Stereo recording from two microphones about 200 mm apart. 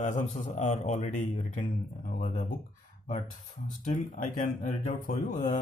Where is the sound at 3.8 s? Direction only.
40° left (ahead or behind).